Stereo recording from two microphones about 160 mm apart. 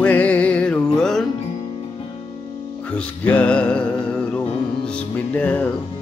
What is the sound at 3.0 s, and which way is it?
Music, 10° left (ahead or behind).